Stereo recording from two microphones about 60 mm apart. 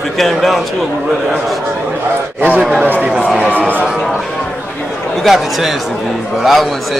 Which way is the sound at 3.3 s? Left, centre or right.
Centre.